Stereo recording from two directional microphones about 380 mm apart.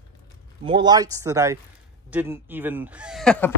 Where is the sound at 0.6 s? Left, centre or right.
Centre.